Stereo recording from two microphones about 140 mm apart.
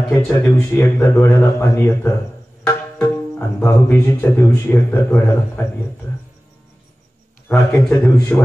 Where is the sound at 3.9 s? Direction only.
20° left (ahead or behind).